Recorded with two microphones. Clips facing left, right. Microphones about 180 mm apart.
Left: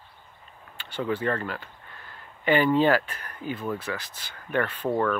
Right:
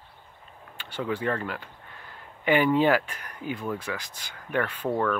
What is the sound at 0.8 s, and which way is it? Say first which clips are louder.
Speech: left 1 dB; 10° right (ahead or behind).